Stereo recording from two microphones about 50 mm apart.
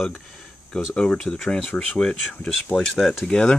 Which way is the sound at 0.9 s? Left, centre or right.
Centre.